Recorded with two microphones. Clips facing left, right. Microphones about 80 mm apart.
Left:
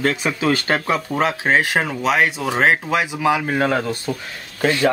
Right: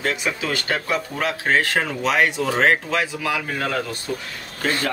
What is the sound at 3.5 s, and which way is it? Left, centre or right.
Speech, left.